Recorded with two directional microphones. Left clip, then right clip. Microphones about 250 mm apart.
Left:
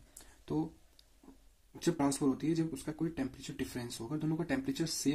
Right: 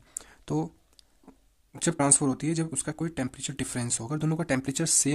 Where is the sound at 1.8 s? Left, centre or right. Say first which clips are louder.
Right 7 dB; right.